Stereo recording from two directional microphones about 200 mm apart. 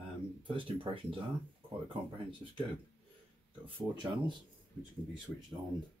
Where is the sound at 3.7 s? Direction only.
25° right (ahead or behind).